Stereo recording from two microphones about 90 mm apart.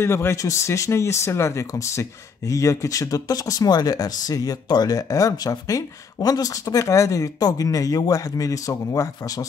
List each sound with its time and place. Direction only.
0.0 s speech: 30° left (ahead or behind)